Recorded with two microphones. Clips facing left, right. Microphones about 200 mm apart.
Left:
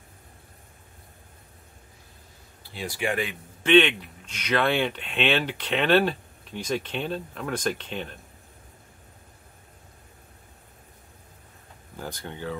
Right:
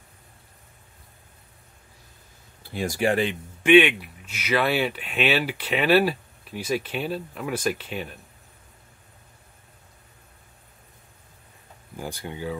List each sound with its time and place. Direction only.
2.7 s speech: 45° right (ahead or behind)
3.6 s speech: 10° right (ahead or behind)
12.0 s speech: 10° right (ahead or behind)